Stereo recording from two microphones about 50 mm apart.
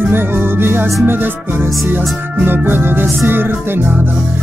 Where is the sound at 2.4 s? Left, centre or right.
Right.